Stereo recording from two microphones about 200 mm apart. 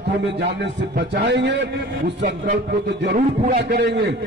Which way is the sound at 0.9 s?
60° right (ahead or behind).